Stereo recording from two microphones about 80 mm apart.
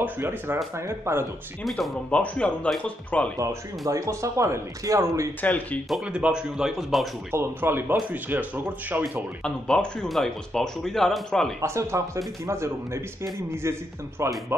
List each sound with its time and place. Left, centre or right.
0.0 s speech: right
1.6 s speech: centre
2.0 s speech: centre
3.3 s speech: right
5.4 s speech: centre
6.0 s speech: centre
7.2 s speech: right
9.4 s speech: centre
11.6 s speech: right